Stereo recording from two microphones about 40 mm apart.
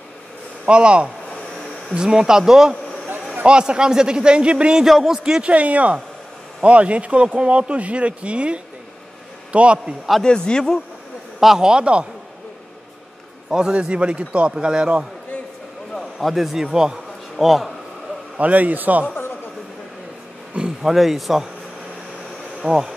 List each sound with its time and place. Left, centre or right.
0.7 s a man's voice: right
3.4 s a man's voice: right
5.0 s speech: centre
5.4 s speech: right
10.2 s a man's voice: centre
11.3 s a man's voice: centre
13.5 s a man's voice: centre
15.9 s a man's voice: centre
17.4 s a man's voice: centre
18.4 s speech: right
20.8 s speech: centre
22.6 s speech: centre